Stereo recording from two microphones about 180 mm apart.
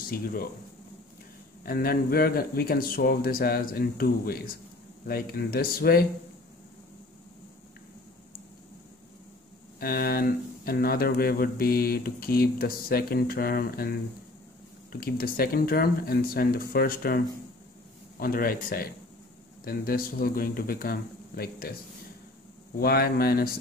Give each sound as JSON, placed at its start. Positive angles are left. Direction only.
{"t": 0.1, "sound": "speech", "side_deg": 55}
{"t": 1.6, "sound": "speech", "side_deg": 55}
{"t": 9.8, "sound": "speech", "side_deg": 55}
{"t": 18.2, "sound": "a man's voice", "side_deg": 55}
{"t": 22.8, "sound": "speech", "side_deg": 60}